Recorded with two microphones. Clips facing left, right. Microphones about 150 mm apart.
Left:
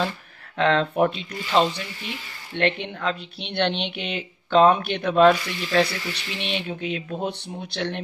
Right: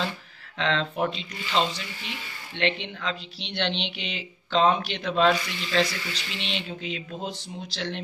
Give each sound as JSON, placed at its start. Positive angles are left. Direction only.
{"t": 0.6, "sound": "speech", "side_deg": 50}